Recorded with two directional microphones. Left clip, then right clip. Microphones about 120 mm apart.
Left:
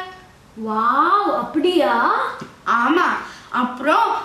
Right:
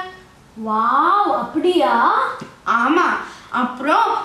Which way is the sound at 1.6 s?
Centre (ahead or behind).